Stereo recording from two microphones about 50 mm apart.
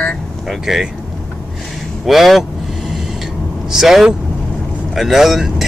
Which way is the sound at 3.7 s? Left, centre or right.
Centre.